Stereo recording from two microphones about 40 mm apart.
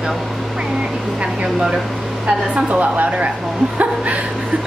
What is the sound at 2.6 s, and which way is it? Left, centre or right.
A woman's voice, right.